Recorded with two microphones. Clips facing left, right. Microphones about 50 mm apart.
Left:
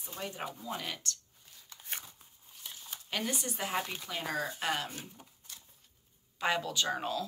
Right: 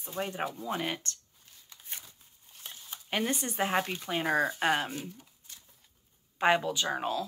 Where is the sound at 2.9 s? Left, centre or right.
Right.